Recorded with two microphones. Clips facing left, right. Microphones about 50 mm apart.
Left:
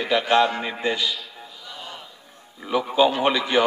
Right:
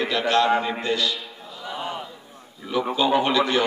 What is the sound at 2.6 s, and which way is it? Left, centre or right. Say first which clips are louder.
Speech: left 3 dB; centre.